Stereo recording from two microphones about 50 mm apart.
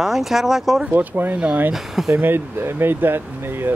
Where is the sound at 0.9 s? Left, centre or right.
Right.